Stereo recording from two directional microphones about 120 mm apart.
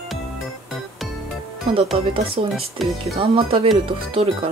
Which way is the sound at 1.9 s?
45° right (ahead or behind).